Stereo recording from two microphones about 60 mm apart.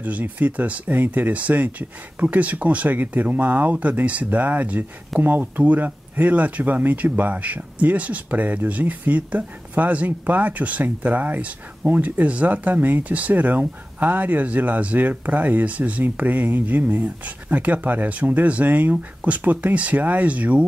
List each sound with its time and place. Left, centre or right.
0.0 s speech: right